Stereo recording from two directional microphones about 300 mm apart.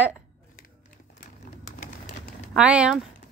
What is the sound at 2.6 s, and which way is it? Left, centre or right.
Speech, centre.